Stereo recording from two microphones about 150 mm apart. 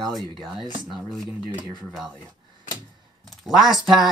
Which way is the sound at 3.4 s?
Centre (ahead or behind).